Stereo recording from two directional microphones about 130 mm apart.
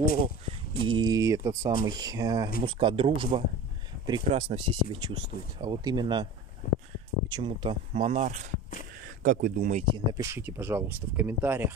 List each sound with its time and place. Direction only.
0.5 s speech: 40° right (ahead or behind)
1.1 s speech: 25° right (ahead or behind)
2.6 s speech: 40° right (ahead or behind)
4.0 s speech: 35° right (ahead or behind)
4.3 s speech: 45° right (ahead or behind)
6.6 s speech: 90° left
7.2 s speech: 40° right (ahead or behind)
7.9 s speech: 60° right (ahead or behind)
9.2 s speech: 90° right
9.8 s speech: 35° right (ahead or behind)
10.2 s speech: 20° right (ahead or behind)